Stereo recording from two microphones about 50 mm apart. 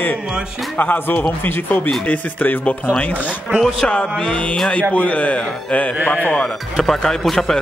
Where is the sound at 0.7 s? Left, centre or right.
Left.